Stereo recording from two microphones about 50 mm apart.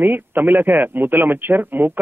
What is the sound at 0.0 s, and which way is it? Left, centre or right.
Speech, right.